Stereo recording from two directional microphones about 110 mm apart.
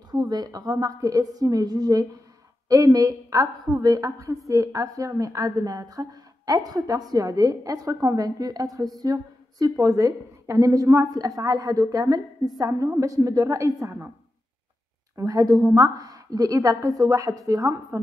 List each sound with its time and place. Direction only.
0.1 s a woman's voice: 35° right (ahead or behind)
15.1 s a woman's voice: 30° right (ahead or behind)